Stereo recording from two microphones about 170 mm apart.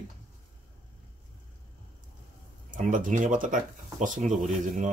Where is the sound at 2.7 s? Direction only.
50° right (ahead or behind).